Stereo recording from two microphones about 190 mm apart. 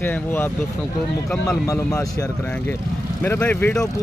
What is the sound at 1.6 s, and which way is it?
Speech, 15° left (ahead or behind).